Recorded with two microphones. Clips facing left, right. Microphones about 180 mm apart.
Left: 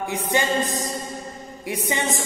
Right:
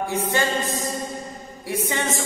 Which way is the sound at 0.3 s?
15° left (ahead or behind).